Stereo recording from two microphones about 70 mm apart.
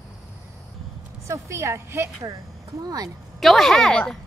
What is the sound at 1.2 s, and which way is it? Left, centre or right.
Speech, right.